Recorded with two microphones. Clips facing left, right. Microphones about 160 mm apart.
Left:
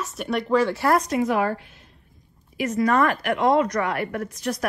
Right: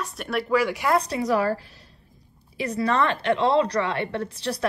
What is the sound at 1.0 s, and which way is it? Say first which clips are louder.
A woman's voice: left 1 dB; 35° right (ahead or behind).